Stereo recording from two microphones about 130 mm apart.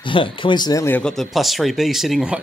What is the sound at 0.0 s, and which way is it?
Speech, 40° left (ahead or behind).